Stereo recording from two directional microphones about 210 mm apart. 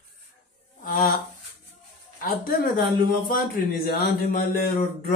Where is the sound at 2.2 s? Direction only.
45° left (ahead or behind).